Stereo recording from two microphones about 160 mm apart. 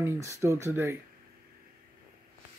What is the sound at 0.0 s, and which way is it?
Speech, 15° right (ahead or behind).